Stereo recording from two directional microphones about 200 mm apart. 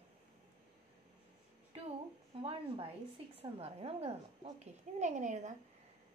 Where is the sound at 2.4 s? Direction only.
25° right (ahead or behind).